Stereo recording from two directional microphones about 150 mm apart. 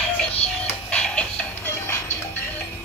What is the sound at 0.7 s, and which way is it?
Music, 5° left (ahead or behind).